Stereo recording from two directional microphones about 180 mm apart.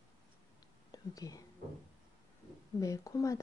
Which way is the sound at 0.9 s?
20° left (ahead or behind).